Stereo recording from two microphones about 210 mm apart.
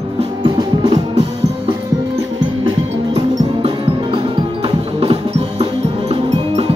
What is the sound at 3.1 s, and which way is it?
Music, 25° right (ahead or behind).